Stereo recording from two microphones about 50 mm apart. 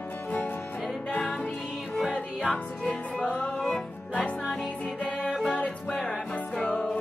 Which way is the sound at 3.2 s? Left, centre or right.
Left.